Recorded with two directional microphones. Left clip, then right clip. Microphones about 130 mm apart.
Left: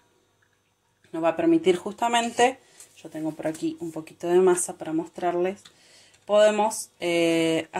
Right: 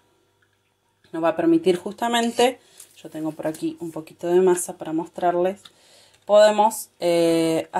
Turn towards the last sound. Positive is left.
turn(degrees=-25)  # may be behind; listen again after turning